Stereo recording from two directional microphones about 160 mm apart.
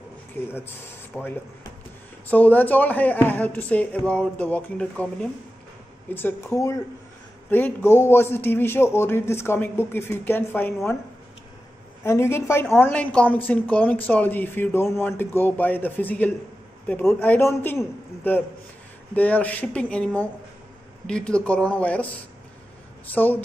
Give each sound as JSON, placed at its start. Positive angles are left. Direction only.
{"t": 0.3, "sound": "a man's voice", "side_deg": 15}
{"t": 6.0, "sound": "a man's voice", "side_deg": 15}
{"t": 12.0, "sound": "a man's voice", "side_deg": 15}
{"t": 23.1, "sound": "a man's voice", "side_deg": 10}